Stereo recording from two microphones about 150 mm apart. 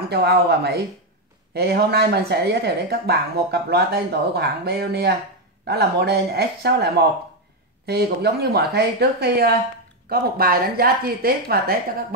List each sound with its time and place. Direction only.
0.1 s speech: 90° right